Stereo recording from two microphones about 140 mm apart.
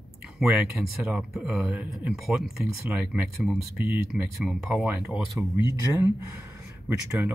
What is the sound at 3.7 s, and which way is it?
Speech, 90° right.